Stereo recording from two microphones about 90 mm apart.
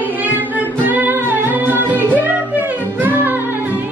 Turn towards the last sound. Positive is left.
turn(degrees=-20)  # may be behind; listen again after turning